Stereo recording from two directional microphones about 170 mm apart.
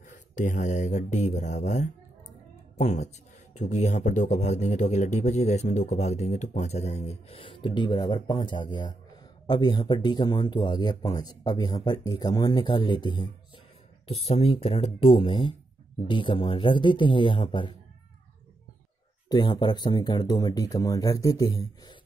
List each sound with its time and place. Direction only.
0.4 s speech: 45° left (ahead or behind); by 17.7 s 30° left (ahead or behind)
19.2 s speech: 25° left (ahead or behind)